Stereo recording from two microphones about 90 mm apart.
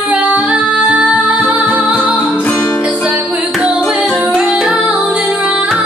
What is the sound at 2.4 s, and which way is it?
Music, 15° left (ahead or behind).